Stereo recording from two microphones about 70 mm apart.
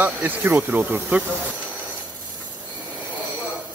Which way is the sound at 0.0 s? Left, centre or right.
Right.